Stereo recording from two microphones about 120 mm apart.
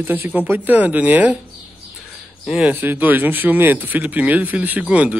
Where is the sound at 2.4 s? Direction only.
5° right (ahead or behind).